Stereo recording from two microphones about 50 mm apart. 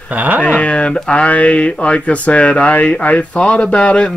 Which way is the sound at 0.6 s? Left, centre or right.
Left.